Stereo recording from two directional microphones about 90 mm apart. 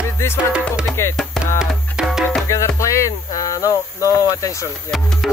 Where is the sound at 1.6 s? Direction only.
5° right (ahead or behind).